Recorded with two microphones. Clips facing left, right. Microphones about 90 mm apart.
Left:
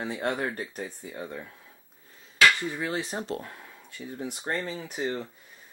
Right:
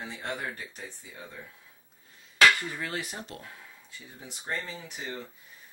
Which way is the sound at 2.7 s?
20° left (ahead or behind).